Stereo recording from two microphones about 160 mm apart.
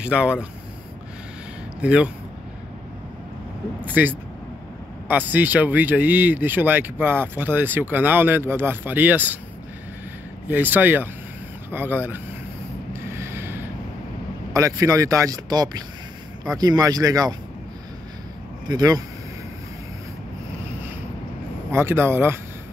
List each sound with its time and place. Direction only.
0.0 s speech: 5° right (ahead or behind)
1.8 s speech: 5° right (ahead or behind)
3.8 s speech: 10° right (ahead or behind)
10.5 s speech: 10° right (ahead or behind)
12.9 s mechanisms: 15° right (ahead or behind)
14.5 s speech: 20° right (ahead or behind)
18.7 s speech: 25° right (ahead or behind)
21.7 s speech: 15° right (ahead or behind)